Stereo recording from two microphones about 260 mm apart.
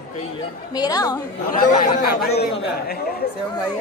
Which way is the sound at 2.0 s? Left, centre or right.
Left.